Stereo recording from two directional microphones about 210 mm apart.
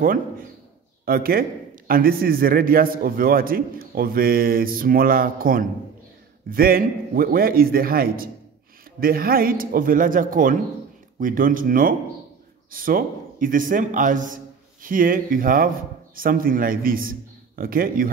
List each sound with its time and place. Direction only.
1.0 s a man's voice: 45° right (ahead or behind)